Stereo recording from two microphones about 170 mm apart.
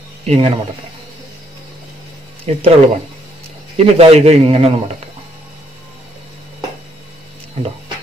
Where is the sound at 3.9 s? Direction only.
35° right (ahead or behind).